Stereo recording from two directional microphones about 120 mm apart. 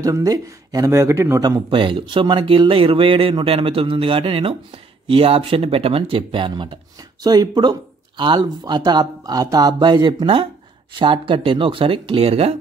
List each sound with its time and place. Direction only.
0.0 s speech: 30° right (ahead or behind)
1.7 s speech: 45° right (ahead or behind)